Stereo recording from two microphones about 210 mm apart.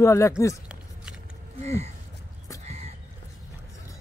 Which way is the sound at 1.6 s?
30° right (ahead or behind).